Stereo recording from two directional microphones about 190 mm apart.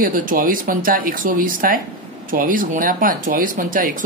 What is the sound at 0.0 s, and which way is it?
Speech, 45° right (ahead or behind).